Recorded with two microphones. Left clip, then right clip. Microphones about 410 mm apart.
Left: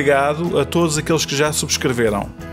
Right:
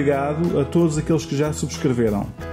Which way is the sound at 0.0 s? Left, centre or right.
Left.